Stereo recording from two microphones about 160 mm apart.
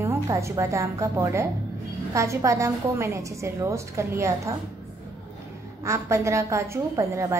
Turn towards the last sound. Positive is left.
turn(degrees=-20)  # may be behind; listen again after turning